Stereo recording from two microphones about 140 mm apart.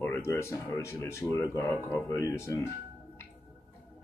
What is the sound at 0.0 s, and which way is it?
Speech, 20° left (ahead or behind).